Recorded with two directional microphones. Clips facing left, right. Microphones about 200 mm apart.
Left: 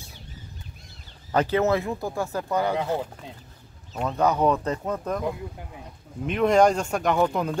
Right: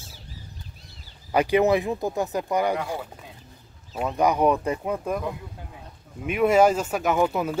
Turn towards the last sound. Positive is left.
turn(degrees=-5)  # may be behind; listen again after turning